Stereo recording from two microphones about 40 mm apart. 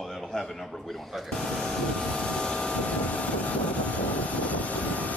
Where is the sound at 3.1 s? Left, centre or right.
Left.